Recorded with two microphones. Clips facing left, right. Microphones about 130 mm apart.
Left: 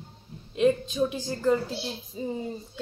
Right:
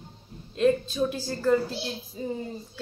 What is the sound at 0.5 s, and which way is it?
A woman's voice, 15° left (ahead or behind).